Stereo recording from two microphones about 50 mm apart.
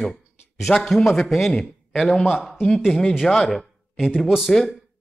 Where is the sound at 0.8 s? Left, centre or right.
Centre.